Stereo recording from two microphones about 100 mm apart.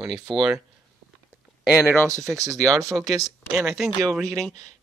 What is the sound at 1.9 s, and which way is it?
Speech, 30° right (ahead or behind).